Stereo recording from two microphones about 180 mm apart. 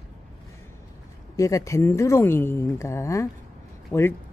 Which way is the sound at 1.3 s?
20° left (ahead or behind).